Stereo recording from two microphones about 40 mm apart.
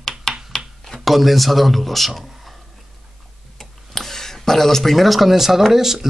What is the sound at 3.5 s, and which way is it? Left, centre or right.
Tick-tock, centre.